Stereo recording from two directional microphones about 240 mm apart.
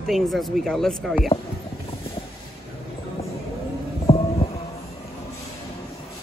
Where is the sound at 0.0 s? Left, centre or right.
Centre.